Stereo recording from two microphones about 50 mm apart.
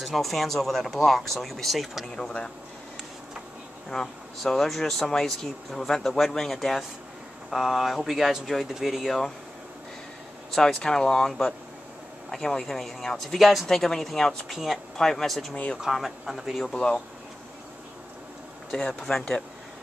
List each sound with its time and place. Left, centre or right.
0.0 s speech: centre
3.9 s speech: centre
10.5 s speech: centre
14.5 s speech: centre
15.5 s speech: left
15.8 s speech: centre
16.7 s speech: left
18.9 s speech: centre